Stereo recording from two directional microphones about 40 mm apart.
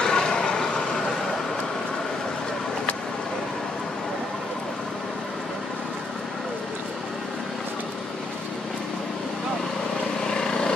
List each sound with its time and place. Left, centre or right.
0.0 s vehicle: centre
10.2 s vehicle: centre